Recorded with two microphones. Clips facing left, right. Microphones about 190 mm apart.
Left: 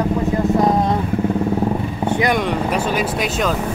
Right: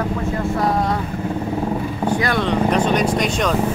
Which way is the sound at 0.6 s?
20° left (ahead or behind).